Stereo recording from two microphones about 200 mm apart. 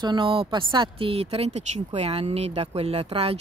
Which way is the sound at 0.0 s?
25° right (ahead or behind).